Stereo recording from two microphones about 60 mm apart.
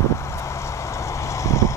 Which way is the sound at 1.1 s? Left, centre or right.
Left.